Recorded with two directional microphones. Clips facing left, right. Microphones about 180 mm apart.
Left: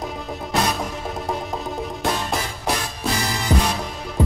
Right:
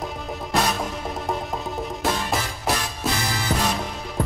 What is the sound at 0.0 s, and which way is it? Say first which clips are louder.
Music: left 1 dB; centre (ahead or behind).